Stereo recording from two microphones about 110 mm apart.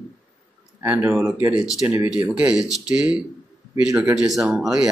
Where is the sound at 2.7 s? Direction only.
35° left (ahead or behind).